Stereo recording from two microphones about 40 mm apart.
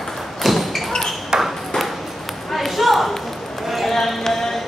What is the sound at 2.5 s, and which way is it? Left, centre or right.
Ping, centre.